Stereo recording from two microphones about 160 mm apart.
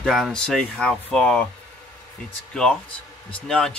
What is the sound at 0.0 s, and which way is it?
Speech, centre (ahead or behind).